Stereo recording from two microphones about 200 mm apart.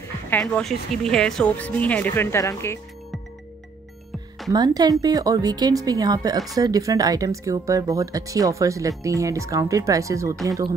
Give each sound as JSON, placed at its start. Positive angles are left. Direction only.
{"t": 0.3, "sound": "speech", "side_deg": 5}
{"t": 4.5, "sound": "speech", "side_deg": -20}